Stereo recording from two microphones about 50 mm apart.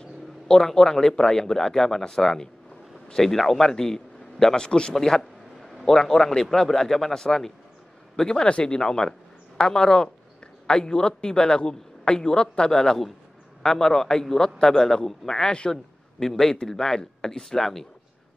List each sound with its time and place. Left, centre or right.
0.5 s a man's voice: centre